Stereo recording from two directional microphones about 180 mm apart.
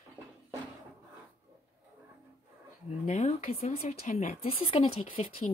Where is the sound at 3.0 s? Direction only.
40° left (ahead or behind).